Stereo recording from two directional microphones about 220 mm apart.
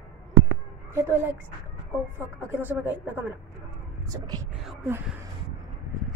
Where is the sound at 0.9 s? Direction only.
10° right (ahead or behind).